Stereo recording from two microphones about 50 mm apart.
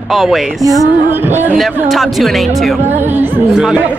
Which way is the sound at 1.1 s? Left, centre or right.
Right.